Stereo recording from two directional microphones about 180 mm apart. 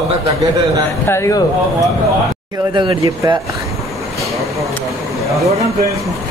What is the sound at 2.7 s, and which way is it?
Speech, 20° right (ahead or behind).